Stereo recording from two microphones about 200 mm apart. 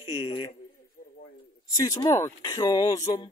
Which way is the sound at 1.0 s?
50° left (ahead or behind).